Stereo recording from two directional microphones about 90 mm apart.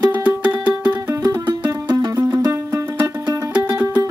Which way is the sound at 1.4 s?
50° right (ahead or behind).